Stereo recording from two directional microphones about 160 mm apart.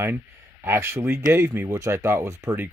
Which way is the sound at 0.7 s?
15° right (ahead or behind).